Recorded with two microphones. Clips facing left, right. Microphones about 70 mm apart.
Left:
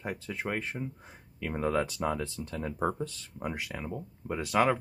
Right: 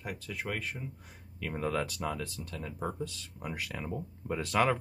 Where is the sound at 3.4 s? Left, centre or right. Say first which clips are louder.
Left 3 dB; centre.